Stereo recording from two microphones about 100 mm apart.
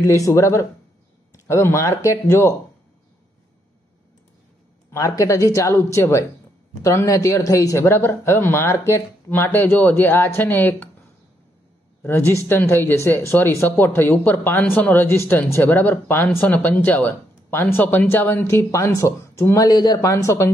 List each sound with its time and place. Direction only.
0.0 s speech: 30° left (ahead or behind)
4.9 s speech: 35° left (ahead or behind)
12.0 s speech: 20° left (ahead or behind)